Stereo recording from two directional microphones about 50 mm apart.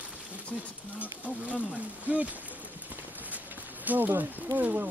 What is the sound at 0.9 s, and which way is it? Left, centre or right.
Speech, right.